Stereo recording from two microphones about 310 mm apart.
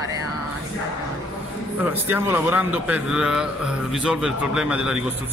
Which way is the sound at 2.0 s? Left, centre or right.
Centre.